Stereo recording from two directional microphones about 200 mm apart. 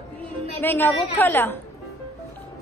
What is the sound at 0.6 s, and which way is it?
A woman's voice, 10° left (ahead or behind).